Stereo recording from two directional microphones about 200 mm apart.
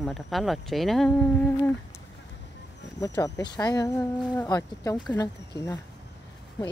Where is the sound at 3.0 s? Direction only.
15° left (ahead or behind).